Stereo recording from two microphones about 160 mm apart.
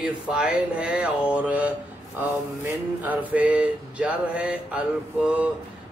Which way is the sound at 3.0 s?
10° right (ahead or behind).